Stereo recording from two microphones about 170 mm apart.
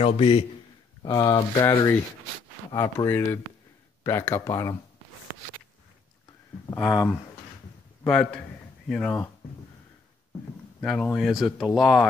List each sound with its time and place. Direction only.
0.0 s a man's voice: 35° left (ahead or behind)
1.0 s speech: 20° left (ahead or behind)
6.8 s speech: centre (ahead or behind)
8.0 s a sound: centre (ahead or behind)
10.8 s speech: 5° left (ahead or behind)